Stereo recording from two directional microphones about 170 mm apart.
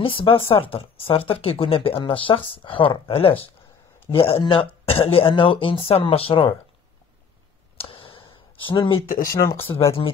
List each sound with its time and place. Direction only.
0.0 s speech: 30° left (ahead or behind)
7.7 s a sound: 30° left (ahead or behind)
9.0 s speech: 55° left (ahead or behind)
9.3 s speech: 15° left (ahead or behind)